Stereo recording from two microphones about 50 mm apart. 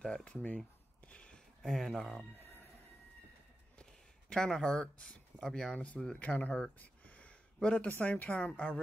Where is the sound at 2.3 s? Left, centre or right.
Left.